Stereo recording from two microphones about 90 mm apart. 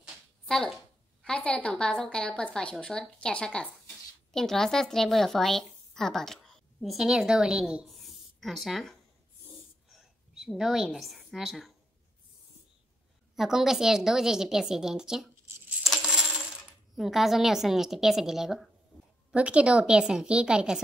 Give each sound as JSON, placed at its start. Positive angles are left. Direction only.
{"t": 0.5, "sound": "a woman's voice", "side_deg": 5}
{"t": 9.8, "sound": "a sound", "side_deg": -5}
{"t": 13.4, "sound": "a woman's voice", "side_deg": -5}
{"t": 15.4, "sound": "coin", "side_deg": -20}
{"t": 16.9, "sound": "a woman's voice", "side_deg": -5}